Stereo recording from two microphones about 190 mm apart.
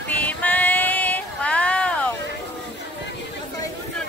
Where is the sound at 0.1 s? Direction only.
10° left (ahead or behind).